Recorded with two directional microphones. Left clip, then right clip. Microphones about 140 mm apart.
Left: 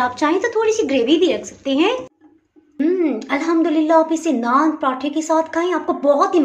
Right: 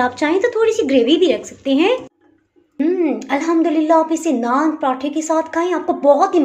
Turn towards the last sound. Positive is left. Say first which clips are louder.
# right 2 dB
turn(degrees=-10)  # may be behind; listen again after turning